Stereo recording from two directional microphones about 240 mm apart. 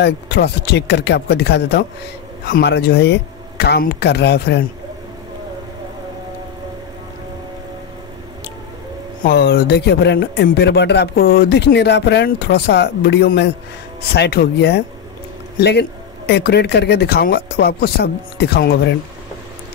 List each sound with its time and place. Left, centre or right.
0.0 s speech: left
9.2 s speech: left